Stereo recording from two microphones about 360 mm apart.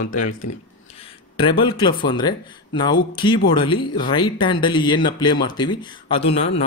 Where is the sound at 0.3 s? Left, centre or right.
Left.